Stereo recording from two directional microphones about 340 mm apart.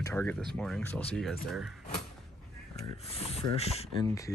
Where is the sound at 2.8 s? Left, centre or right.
Centre.